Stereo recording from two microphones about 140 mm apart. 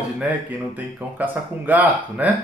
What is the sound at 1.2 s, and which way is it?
A man's voice, 10° right (ahead or behind).